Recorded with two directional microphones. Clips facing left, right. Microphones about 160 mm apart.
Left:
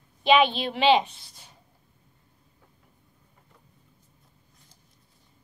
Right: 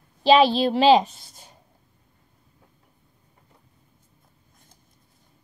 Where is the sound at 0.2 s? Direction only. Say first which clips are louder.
Right 4 dB; 35° right (ahead or behind).